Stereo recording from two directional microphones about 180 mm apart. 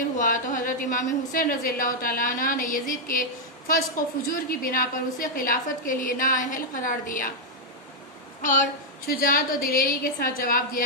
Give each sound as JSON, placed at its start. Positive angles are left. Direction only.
{"t": 0.2, "sound": "a woman's voice", "side_deg": 50}
{"t": 8.4, "sound": "a woman's voice", "side_deg": 50}